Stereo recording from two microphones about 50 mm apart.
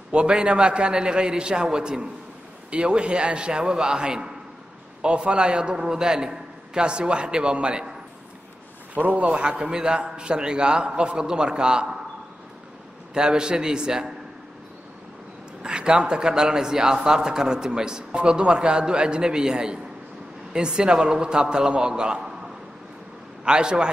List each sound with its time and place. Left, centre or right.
0.1 s a man's voice: centre
8.9 s a man's voice: right
13.1 s a man's voice: centre
15.6 s a man's voice: centre
23.4 s a man's voice: centre